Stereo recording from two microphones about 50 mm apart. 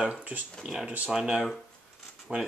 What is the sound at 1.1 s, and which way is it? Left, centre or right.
Speech, centre.